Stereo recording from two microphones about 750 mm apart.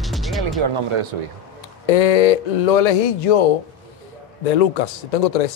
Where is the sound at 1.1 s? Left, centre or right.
Right.